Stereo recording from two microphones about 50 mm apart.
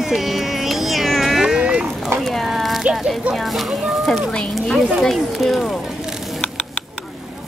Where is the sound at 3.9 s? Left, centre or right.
Centre.